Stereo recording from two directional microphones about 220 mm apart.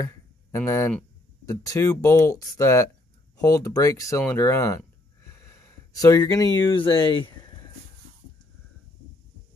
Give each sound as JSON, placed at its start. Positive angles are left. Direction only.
{"t": 0.0, "sound": "speech", "side_deg": 15}